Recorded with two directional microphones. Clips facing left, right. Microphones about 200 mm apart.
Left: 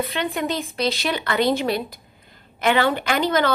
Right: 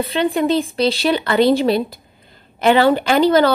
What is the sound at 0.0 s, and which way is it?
A woman's voice, 30° right (ahead or behind).